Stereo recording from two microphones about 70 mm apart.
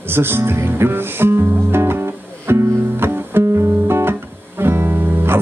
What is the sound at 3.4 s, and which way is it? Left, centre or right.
Music, right.